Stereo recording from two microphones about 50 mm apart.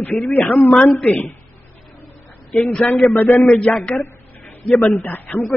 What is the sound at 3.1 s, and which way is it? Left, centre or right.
Speech, left.